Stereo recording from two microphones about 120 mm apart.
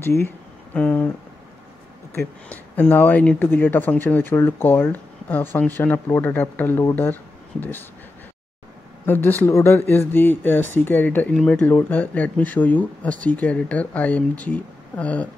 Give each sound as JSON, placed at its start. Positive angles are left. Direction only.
{"t": 0.7, "sound": "speech", "side_deg": 10}
{"t": 2.1, "sound": "speech", "side_deg": 15}
{"t": 9.0, "sound": "speech", "side_deg": 15}